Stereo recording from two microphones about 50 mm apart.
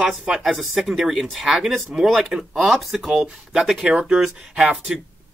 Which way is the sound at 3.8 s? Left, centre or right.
Centre.